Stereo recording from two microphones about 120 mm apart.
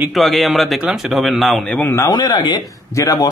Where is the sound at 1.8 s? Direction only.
20° left (ahead or behind).